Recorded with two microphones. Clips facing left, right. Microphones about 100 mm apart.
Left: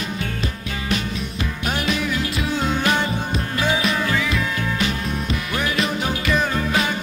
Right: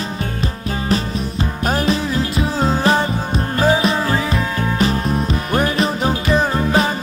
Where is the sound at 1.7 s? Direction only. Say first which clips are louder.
Right 5 dB; 35° right (ahead or behind).